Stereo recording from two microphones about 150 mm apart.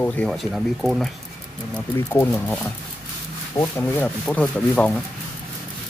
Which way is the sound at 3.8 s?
10° left (ahead or behind).